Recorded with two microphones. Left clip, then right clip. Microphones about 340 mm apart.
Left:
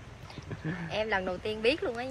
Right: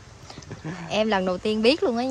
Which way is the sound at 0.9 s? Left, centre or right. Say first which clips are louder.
Right 8 dB; right.